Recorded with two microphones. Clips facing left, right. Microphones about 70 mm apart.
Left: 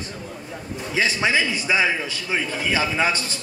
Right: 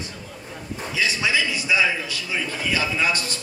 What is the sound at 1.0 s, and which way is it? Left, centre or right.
A man's voice, left.